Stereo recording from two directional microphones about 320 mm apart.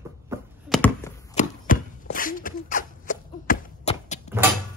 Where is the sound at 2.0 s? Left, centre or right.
Left.